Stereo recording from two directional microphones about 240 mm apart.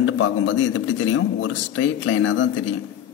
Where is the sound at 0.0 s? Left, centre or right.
Left.